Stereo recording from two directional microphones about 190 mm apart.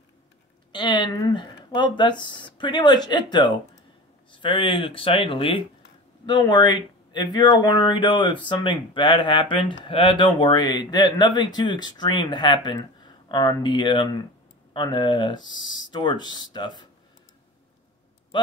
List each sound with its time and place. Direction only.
0.7 s speech: 25° left (ahead or behind)